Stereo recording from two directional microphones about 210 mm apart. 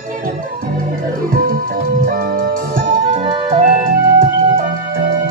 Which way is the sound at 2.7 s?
40° right (ahead or behind).